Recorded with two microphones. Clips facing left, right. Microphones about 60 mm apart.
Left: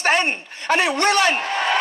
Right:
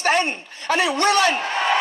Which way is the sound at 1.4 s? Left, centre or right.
Right.